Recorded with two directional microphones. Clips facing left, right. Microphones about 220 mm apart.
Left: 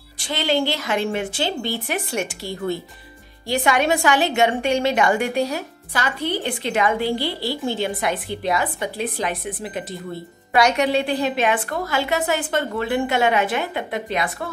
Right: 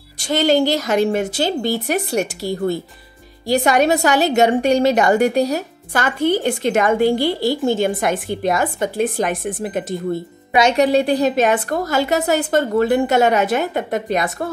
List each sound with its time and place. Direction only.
0.2 s a woman's voice: 45° right (ahead or behind)